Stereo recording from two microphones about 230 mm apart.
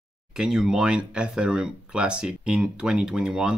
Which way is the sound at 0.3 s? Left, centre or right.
Centre.